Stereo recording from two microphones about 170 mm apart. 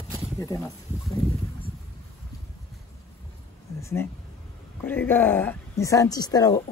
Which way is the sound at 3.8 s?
15° left (ahead or behind).